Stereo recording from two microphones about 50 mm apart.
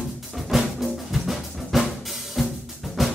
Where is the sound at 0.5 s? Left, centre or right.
Centre.